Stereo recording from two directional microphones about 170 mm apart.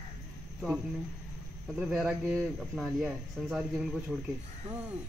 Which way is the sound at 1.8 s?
5° right (ahead or behind).